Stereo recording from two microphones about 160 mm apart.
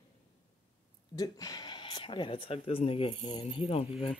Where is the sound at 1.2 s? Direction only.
20° left (ahead or behind).